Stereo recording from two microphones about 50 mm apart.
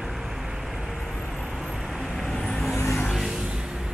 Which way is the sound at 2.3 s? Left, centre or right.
Centre.